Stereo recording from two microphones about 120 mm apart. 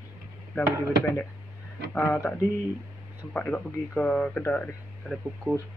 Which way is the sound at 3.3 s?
10° left (ahead or behind).